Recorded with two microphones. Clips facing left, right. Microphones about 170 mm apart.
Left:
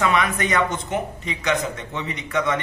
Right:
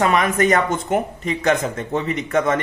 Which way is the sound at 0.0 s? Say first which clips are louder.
Right 4 dB; 45° right (ahead or behind).